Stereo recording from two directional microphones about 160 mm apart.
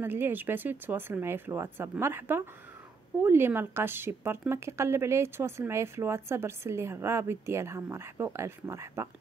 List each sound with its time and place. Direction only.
0.0 s speech: 15° right (ahead or behind)